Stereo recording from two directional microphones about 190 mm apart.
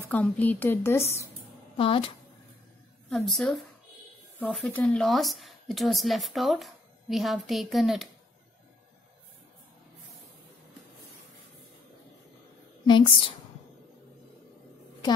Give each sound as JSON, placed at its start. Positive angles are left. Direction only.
{"t": 0.0, "sound": "a woman's voice", "side_deg": 10}
{"t": 1.8, "sound": "speech", "side_deg": 30}
{"t": 3.1, "sound": "speech", "side_deg": 5}
{"t": 12.8, "sound": "a sound", "side_deg": 25}